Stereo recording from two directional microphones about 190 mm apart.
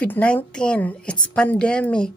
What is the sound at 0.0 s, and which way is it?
A woman's voice, 5° left (ahead or behind).